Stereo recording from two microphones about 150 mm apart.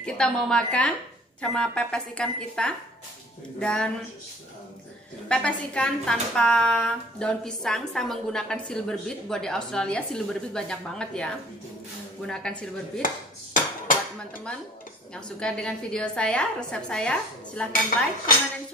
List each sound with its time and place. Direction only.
0.0 s a woman's voice: 5° left (ahead or behind)
5.3 s a woman's voice: 5° left (ahead or behind)
13.0 s a sound: 65° left (ahead or behind)
15.1 s a woman's voice: 5° left (ahead or behind)